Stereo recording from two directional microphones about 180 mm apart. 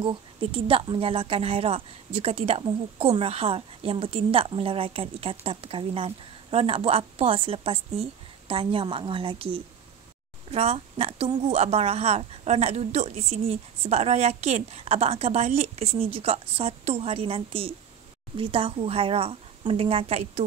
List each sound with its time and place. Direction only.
0.0 s speech: 30° right (ahead or behind)